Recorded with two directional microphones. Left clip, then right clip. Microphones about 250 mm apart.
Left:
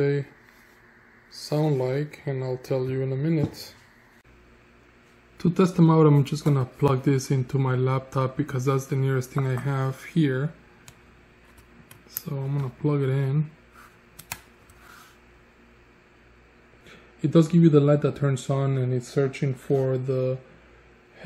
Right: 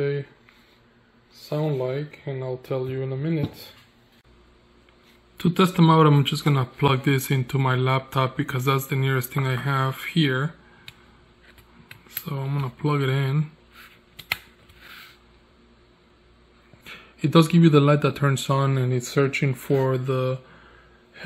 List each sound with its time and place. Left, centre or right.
1.5 s speech: centre
5.4 s speech: centre
12.3 s speech: centre
16.8 s speech: centre
19.8 s speech: centre